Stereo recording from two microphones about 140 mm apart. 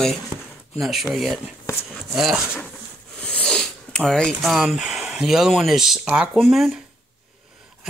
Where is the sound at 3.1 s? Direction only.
5° left (ahead or behind).